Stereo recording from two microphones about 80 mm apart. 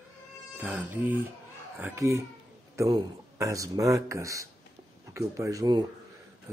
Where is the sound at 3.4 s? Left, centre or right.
Right.